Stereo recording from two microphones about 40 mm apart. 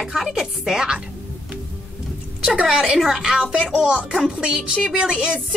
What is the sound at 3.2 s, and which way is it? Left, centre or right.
Music, centre.